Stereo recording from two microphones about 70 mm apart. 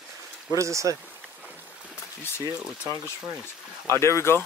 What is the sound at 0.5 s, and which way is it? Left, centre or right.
Speech, right.